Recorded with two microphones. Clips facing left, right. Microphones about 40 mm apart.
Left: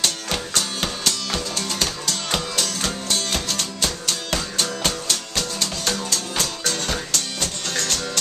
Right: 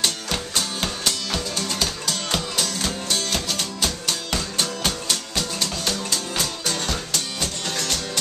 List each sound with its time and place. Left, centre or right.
1.6 s music: centre
3.1 s music: centre